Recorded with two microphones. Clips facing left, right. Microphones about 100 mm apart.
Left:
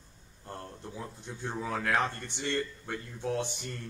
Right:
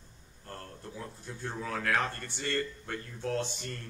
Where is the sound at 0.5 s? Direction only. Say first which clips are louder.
Left 2 dB; 15° left (ahead or behind).